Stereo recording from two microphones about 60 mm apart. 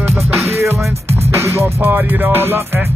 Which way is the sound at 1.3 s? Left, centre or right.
Right.